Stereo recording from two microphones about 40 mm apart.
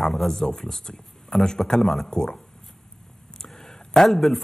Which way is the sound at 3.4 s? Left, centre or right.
Centre.